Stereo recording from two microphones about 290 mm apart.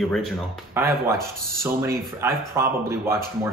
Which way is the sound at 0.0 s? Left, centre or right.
Centre.